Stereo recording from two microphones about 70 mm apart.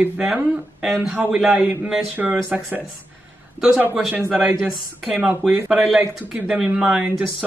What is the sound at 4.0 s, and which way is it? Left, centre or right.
A man's voice, centre.